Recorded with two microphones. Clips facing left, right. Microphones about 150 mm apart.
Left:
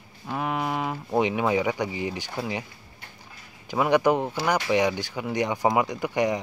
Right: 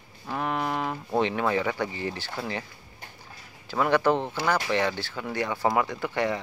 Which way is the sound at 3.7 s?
15° left (ahead or behind).